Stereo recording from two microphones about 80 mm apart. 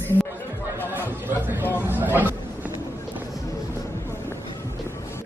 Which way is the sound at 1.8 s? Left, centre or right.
Right.